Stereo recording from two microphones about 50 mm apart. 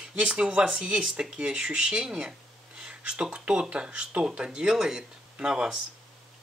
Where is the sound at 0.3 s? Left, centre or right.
Centre.